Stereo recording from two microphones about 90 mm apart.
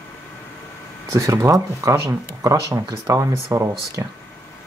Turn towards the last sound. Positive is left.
turn(degrees=-35)  # may be behind; listen again after turning